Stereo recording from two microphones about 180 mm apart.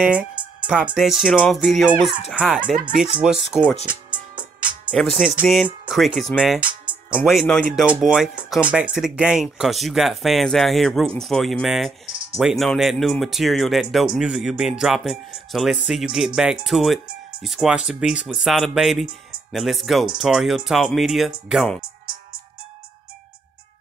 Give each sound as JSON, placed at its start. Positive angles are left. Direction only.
{"t": 0.0, "sound": "speech", "side_deg": -5}
{"t": 4.1, "sound": "music", "side_deg": -25}
{"t": 5.4, "sound": "speech", "side_deg": 0}